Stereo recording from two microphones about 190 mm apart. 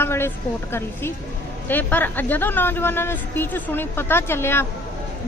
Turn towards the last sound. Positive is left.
turn(degrees=10)  # may be behind; listen again after turning